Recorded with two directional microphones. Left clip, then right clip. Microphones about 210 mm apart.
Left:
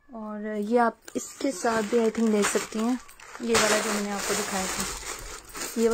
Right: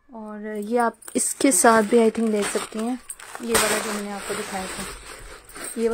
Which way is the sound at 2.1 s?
Centre (ahead or behind).